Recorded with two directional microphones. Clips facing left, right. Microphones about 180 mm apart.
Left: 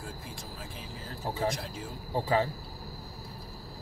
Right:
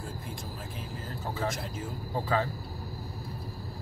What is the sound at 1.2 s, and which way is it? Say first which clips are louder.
Speech: left 2 dB; 20° left (ahead or behind).